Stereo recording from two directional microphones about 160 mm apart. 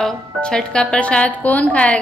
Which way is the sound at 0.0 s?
5° left (ahead or behind).